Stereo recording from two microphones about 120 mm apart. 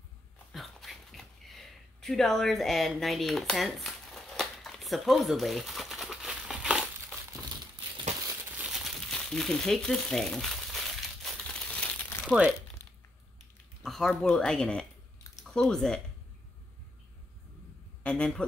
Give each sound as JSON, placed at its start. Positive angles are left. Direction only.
{"t": 0.5, "sound": "a sound", "side_deg": 0}
{"t": 8.5, "sound": "crumpling", "side_deg": -5}
{"t": 12.3, "sound": "speech", "side_deg": -10}
{"t": 12.8, "sound": "a sound", "side_deg": -25}
{"t": 13.8, "sound": "speech", "side_deg": 0}
{"t": 18.0, "sound": "a man's voice", "side_deg": 5}